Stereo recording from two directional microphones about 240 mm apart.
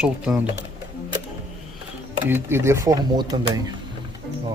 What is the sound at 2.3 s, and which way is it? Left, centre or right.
Speech, centre.